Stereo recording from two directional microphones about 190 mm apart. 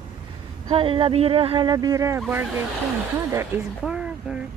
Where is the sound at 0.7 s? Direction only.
25° right (ahead or behind); by 2.4 s 10° right (ahead or behind).